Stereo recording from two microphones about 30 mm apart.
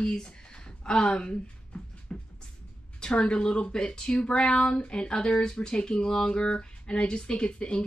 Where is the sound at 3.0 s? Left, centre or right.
Left.